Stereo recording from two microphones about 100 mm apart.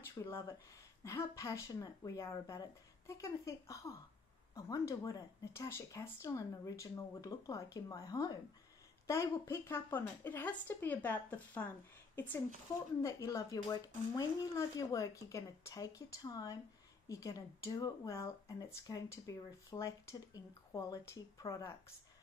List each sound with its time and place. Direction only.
0.2 s speech: 35° left (ahead or behind); by 11.7 s 15° left (ahead or behind)
13.0 s speech: 30° left (ahead or behind)